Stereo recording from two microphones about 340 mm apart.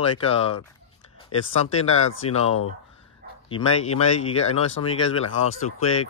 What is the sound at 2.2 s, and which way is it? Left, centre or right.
Speech, centre.